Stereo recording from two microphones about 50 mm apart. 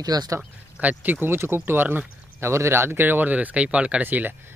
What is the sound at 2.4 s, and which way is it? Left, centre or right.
Speech, right.